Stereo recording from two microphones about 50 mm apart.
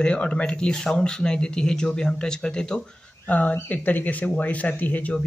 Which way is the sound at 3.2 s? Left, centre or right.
Left.